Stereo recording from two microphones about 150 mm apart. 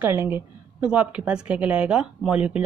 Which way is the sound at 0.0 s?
15° right (ahead or behind).